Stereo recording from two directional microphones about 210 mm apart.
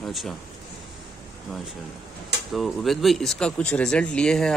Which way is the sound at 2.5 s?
Centre (ahead or behind).